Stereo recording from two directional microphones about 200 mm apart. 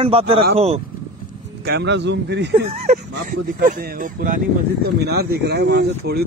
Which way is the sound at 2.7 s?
35° right (ahead or behind).